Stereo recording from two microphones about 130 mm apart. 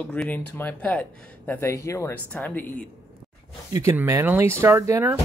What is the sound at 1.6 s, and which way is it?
Speech, 25° left (ahead or behind).